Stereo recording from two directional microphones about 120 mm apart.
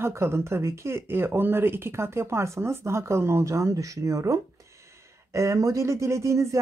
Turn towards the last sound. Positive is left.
turn(degrees=-25)  # may be behind; listen again after turning